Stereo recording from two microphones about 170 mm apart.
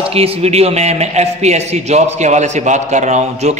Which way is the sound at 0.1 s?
35° right (ahead or behind).